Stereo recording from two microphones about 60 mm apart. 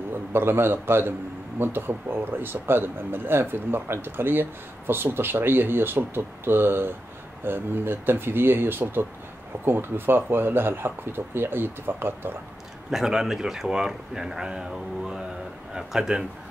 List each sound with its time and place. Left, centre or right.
0.3 s speech: right
12.9 s speech: centre